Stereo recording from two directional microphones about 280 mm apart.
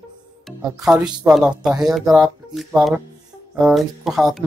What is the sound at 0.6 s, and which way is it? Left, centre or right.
Speech, centre.